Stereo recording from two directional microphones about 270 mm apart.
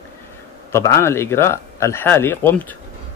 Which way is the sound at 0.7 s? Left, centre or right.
Centre.